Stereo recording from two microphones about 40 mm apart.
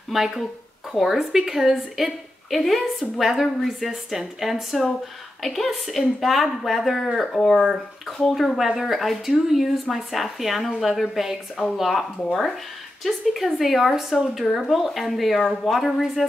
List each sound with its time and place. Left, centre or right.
0.1 s a woman's voice: centre
2.5 s speech: centre
3.2 s a woman's voice: centre
7.2 s speech: centre
13.0 s speech: centre